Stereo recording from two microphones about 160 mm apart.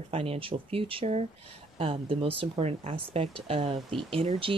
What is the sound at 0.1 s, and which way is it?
Speech, 35° right (ahead or behind).